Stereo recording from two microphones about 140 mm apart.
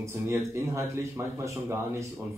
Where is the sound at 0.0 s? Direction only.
20° right (ahead or behind).